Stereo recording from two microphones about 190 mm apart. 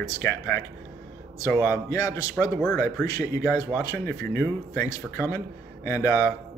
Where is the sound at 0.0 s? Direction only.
15° left (ahead or behind).